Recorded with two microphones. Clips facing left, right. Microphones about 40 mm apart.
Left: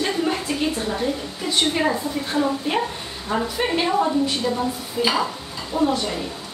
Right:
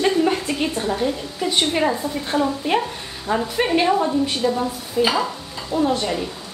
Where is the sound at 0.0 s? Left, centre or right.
Centre.